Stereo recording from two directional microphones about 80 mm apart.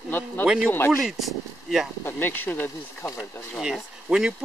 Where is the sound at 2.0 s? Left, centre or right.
Left.